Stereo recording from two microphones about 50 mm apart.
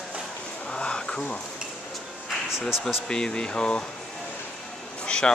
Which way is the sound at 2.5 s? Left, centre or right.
Centre.